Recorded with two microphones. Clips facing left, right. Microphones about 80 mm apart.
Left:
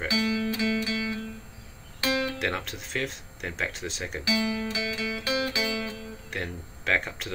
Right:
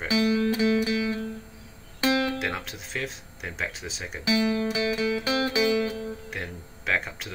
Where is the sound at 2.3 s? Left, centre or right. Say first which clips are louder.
Even; centre.